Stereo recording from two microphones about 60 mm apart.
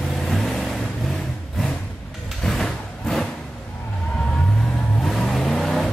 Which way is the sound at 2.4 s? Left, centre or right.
Centre.